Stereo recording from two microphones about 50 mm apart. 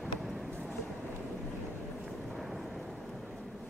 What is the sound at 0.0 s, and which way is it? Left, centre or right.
Vehicle, centre.